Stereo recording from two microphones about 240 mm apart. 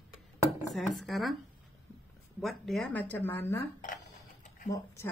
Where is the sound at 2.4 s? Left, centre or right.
Centre.